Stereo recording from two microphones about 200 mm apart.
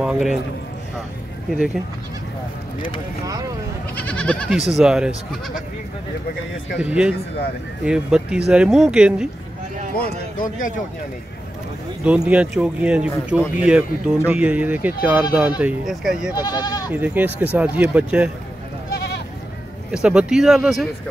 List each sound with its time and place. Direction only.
0.0 s a man's voice: 5° right (ahead or behind)
3.3 s speech: 20° right (ahead or behind)
3.9 s speech: 5° left (ahead or behind)
6.8 s speech: 5° right (ahead or behind)
9.9 s a man's voice: 45° left (ahead or behind)
12.0 s speech: 5° right (ahead or behind)
16.3 s speech: 20° left (ahead or behind)
16.9 s speech: 10° right (ahead or behind)
18.9 s goat: 55° left (ahead or behind)
19.9 s speech: 5° right (ahead or behind)